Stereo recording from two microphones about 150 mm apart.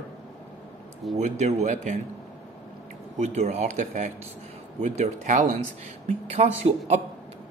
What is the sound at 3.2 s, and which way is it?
Speech, 45° right (ahead or behind).